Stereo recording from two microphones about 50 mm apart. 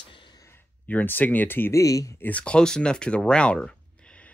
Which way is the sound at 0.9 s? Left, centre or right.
Left.